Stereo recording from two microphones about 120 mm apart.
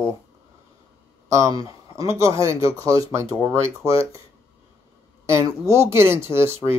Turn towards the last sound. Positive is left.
turn(degrees=-20)  # may be behind; listen again after turning